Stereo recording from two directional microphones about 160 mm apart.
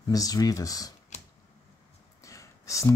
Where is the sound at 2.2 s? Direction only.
20° left (ahead or behind).